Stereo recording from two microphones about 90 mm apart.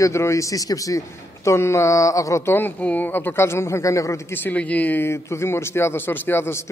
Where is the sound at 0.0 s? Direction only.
35° left (ahead or behind).